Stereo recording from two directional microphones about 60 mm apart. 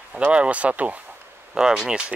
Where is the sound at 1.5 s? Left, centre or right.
Centre.